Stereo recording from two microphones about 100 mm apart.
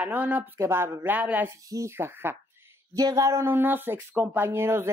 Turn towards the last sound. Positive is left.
turn(degrees=-25)  # may be behind; listen again after turning